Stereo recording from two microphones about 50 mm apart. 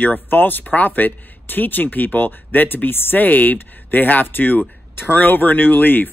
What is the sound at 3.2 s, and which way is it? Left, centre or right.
Speech, left.